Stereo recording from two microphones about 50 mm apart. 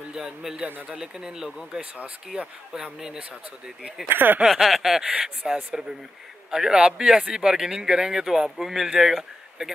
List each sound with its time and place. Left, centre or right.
0.1 s speech: centre
0.7 s speech: right
0.9 s speech: centre
4.1 s speech: right
4.5 s a sound: centre
5.0 s speech: centre
5.7 s speech: centre